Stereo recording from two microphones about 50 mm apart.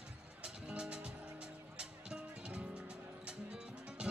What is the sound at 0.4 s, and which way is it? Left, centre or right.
Music, right.